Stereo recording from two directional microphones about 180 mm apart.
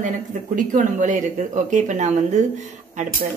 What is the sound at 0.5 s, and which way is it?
Speech, 45° right (ahead or behind).